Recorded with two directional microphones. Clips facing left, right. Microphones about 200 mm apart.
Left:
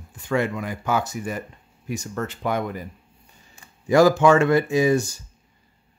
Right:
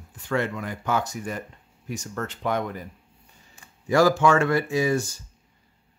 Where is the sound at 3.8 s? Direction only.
20° left (ahead or behind).